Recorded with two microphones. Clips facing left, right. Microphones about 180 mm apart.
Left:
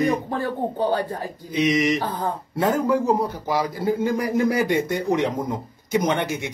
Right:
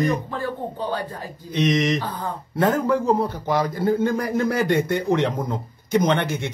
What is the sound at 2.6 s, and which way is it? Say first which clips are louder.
A man's voice: right 1 dB; 5° left (ahead or behind).